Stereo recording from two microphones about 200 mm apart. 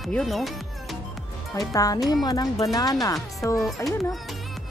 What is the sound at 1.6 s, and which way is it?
Speech, 15° left (ahead or behind).